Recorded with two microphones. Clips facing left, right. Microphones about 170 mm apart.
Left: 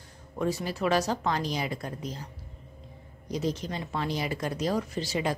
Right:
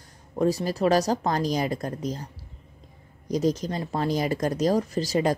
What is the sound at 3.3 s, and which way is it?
Speech, 40° right (ahead or behind).